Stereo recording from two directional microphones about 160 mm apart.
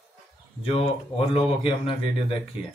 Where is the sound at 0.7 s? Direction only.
35° left (ahead or behind).